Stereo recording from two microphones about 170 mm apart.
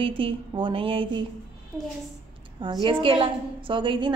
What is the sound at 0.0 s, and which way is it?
Speech, 30° right (ahead or behind).